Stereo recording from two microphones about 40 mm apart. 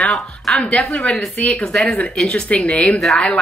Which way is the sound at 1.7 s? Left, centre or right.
Centre.